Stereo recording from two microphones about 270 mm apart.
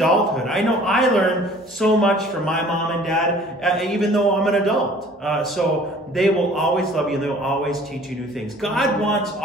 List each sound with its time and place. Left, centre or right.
0.0 s a man's voice: centre
8.6 s a man's voice: centre